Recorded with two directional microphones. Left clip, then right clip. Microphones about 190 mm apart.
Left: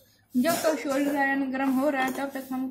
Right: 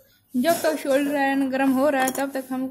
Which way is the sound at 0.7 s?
40° right (ahead or behind).